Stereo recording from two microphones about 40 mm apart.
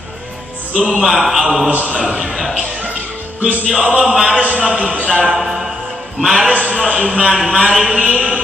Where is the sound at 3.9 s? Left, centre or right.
Centre.